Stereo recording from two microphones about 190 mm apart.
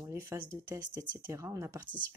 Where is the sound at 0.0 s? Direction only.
15° right (ahead or behind).